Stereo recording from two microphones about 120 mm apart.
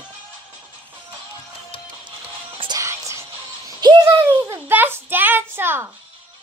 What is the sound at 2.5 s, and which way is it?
Music, 45° right (ahead or behind).